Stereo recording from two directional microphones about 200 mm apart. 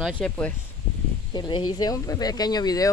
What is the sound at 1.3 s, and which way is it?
Speech, 20° left (ahead or behind).